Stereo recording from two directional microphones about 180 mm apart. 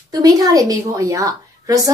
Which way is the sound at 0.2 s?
20° right (ahead or behind).